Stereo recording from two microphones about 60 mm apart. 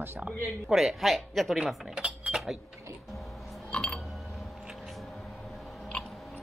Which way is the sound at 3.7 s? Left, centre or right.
Left.